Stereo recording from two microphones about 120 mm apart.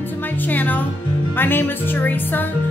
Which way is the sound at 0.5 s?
15° left (ahead or behind).